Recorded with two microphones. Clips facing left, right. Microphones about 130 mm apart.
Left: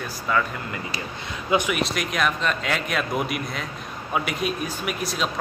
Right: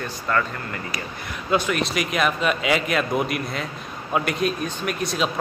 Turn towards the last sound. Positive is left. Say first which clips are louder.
# right 2 dB
turn(degrees=0)  # may be behind; listen again after turning